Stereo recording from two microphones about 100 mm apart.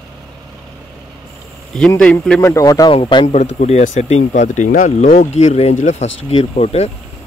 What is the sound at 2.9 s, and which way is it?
Speech, 70° left (ahead or behind).